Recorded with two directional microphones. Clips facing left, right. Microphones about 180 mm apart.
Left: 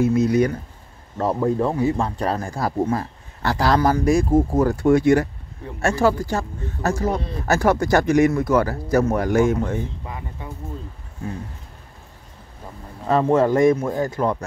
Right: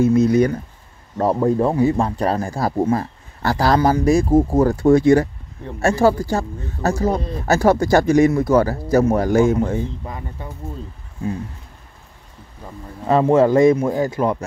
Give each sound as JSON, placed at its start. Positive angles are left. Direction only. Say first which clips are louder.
{"t": 1.1, "sound": "speech", "louder": "right 3 dB", "side_deg": -35}
{"t": 13.1, "sound": "speech", "louder": "right 3 dB", "side_deg": -20}